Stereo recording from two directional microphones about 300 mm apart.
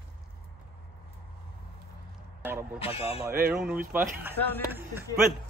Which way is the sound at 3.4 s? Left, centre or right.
Centre.